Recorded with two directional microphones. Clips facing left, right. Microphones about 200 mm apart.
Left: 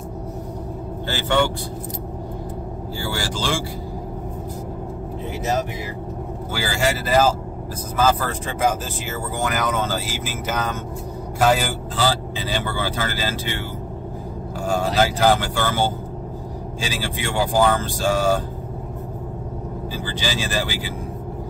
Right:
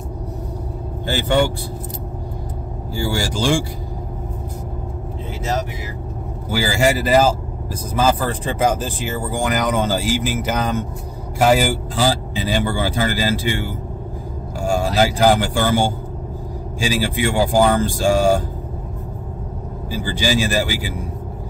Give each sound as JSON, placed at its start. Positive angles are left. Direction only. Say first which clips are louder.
{"t": 1.0, "sound": "speech", "louder": "right 3 dB", "side_deg": -10}
{"t": 3.0, "sound": "speech", "louder": "right 6 dB", "side_deg": -15}
{"t": 6.5, "sound": "speech", "louder": "right 5 dB", "side_deg": -15}
{"t": 14.6, "sound": "speech", "louder": "right 2 dB", "side_deg": -10}
{"t": 19.9, "sound": "speech", "louder": "right 7 dB", "side_deg": -10}